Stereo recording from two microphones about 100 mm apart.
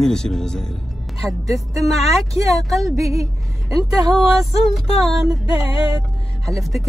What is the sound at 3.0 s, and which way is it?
Speech, 35° right (ahead or behind).